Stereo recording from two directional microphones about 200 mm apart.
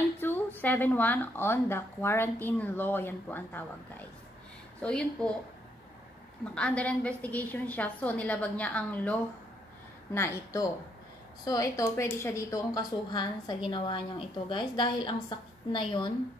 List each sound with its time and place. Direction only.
0.2 s speech: 10° left (ahead or behind)
4.7 s a woman's voice: 5° left (ahead or behind)
6.5 s a woman's voice: 5° left (ahead or behind); by 16.1 s 25° left (ahead or behind)